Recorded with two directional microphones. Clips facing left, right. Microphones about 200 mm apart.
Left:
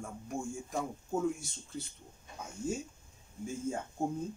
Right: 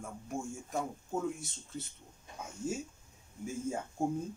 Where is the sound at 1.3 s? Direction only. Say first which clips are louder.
Even; centre (ahead or behind).